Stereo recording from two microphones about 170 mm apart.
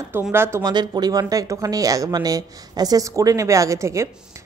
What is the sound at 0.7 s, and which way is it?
Speech, 25° right (ahead or behind).